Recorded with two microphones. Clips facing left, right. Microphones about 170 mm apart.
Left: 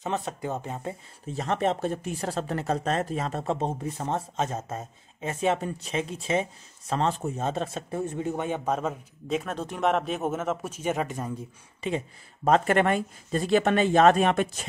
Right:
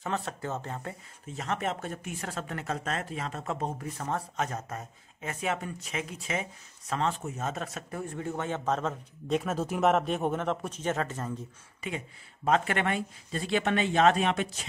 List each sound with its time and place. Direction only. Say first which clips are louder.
0.0 s a man's voice: left 3 dB; 20° left (ahead or behind)
1.3 s speech: left 6 dB; 30° left (ahead or behind)
3.5 s a man's voice: left 4 dB; 20° left (ahead or behind)
11.8 s speech: left 7 dB; 30° left (ahead or behind)
12.4 s speech: left 5 dB; 40° left (ahead or behind)